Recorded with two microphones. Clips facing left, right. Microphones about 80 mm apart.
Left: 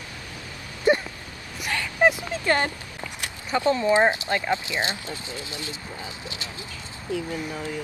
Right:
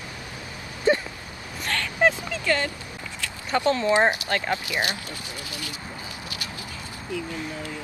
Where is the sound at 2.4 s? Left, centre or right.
Left.